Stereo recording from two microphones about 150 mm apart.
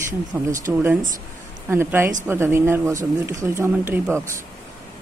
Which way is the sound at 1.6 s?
15° right (ahead or behind).